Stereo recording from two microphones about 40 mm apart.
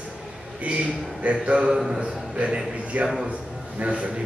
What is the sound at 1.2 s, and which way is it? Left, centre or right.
A man's voice, right.